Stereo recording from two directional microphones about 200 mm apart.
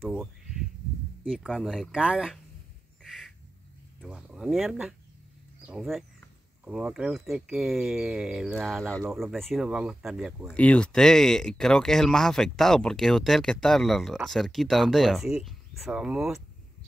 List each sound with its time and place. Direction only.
0.2 s a sound: centre (ahead or behind)
1.2 s speech: 5° right (ahead or behind)
3.0 s bird: centre (ahead or behind)
4.0 s speech: 5° right (ahead or behind)